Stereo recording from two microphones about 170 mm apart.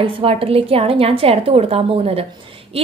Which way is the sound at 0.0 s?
35° right (ahead or behind).